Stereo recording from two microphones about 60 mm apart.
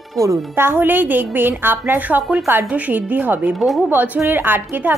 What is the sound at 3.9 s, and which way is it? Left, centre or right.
A woman's voice, right.